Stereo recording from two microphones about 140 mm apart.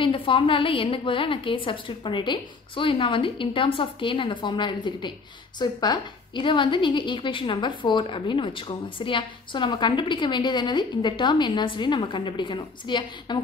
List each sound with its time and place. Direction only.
0.0 s a woman's voice: 40° left (ahead or behind)